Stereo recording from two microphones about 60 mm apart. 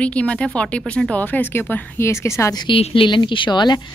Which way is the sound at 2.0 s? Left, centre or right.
Left.